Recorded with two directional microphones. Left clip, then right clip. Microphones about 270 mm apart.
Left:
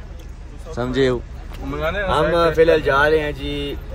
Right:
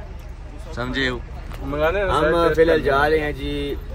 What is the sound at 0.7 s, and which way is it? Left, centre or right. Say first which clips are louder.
Speech: left 5 dB; centre.